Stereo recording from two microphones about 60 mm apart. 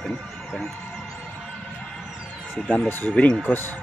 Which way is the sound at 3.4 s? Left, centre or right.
Left.